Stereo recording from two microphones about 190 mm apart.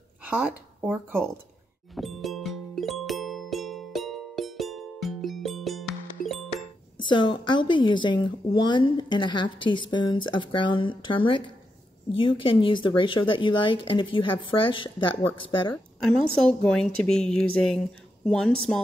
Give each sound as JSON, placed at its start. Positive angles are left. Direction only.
{"t": 0.3, "sound": "speech", "side_deg": -10}
{"t": 2.0, "sound": "music", "side_deg": 0}
{"t": 7.0, "sound": "a woman's voice", "side_deg": 25}
{"t": 16.3, "sound": "a woman's voice", "side_deg": 5}